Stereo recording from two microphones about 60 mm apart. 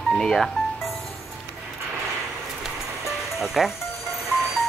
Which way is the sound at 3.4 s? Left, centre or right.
Centre.